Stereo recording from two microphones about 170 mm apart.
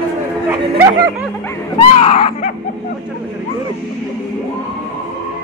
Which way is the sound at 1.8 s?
35° left (ahead or behind).